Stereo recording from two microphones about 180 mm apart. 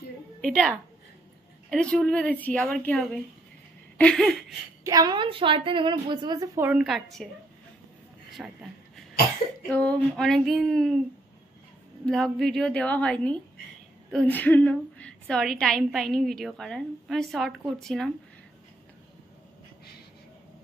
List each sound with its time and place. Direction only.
0.4 s a woman's voice: centre (ahead or behind)
4.8 s a woman's voice: 20° right (ahead or behind)
6.7 s a woman's voice: centre (ahead or behind)
8.4 s a woman's voice: 5° right (ahead or behind)
9.7 s a woman's voice: 10° left (ahead or behind)
12.1 s a woman's voice: centre (ahead or behind)